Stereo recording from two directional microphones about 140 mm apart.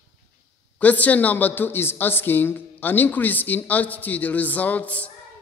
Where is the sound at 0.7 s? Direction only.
10° left (ahead or behind).